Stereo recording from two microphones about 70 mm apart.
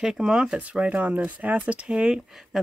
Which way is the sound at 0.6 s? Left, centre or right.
Right.